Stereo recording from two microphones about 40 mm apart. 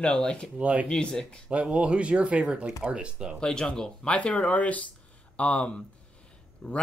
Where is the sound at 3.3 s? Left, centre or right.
Centre.